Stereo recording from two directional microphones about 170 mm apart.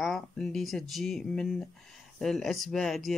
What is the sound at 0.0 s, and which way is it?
Speech, centre (ahead or behind).